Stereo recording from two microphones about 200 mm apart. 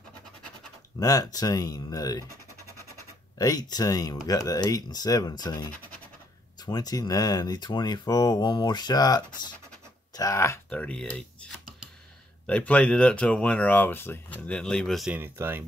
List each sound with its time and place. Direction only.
0.9 s speech: 20° left (ahead or behind)
3.3 s speech: 20° left (ahead or behind); by 15.6 s 10° right (ahead or behind)